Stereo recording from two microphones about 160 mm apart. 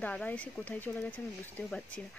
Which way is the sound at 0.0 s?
5° left (ahead or behind).